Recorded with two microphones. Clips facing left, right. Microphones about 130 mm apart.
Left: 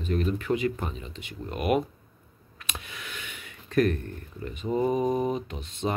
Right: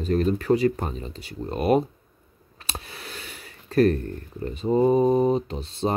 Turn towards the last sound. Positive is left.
turn(degrees=-35)  # may be behind; listen again after turning